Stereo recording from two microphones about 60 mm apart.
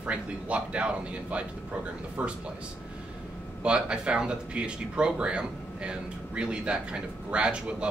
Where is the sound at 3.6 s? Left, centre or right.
Centre.